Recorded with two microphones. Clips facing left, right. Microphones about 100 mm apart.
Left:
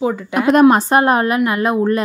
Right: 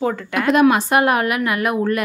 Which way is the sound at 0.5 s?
35° left (ahead or behind).